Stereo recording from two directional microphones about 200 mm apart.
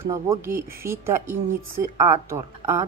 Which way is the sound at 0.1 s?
15° right (ahead or behind).